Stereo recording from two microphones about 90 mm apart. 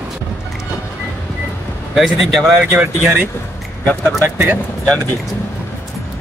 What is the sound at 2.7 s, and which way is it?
Speech, 15° right (ahead or behind).